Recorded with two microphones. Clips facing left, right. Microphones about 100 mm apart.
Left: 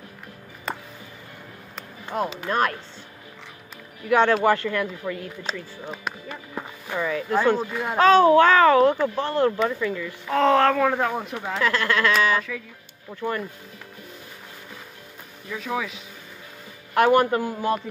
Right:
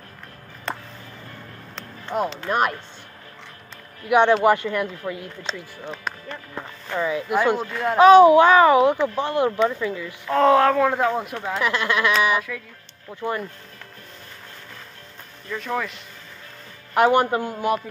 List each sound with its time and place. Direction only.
0.7 s music: 5° left (ahead or behind)
2.2 s speech: 5° left (ahead or behind)
4.1 s a man's voice: 20° right (ahead or behind)
5.5 s speech: 5° left (ahead or behind)
7.0 s a child's voice: 15° right (ahead or behind)
7.6 s speech: 5° left (ahead or behind)
8.0 s a child's voice: 15° right (ahead or behind)
10.3 s speech: centre (ahead or behind)
11.6 s a man's voice: 20° right (ahead or behind)
15.4 s speech: 5° left (ahead or behind)
16.9 s a man's voice: 20° right (ahead or behind)